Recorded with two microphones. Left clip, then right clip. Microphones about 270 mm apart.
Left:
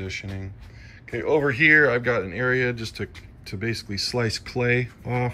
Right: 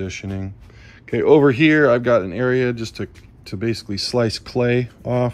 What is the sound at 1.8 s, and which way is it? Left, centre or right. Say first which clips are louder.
A man's voice: right 7 dB; right.